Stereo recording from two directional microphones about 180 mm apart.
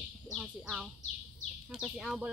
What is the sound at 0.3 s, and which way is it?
Speech, centre (ahead or behind).